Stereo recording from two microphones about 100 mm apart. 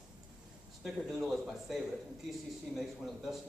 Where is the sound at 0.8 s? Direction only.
Centre (ahead or behind).